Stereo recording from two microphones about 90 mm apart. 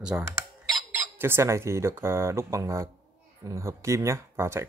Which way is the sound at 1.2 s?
25° right (ahead or behind).